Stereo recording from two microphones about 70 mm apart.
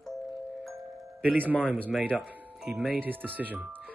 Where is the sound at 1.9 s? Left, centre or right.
Centre.